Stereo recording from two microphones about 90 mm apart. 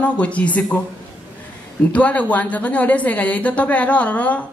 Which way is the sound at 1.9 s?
15° left (ahead or behind).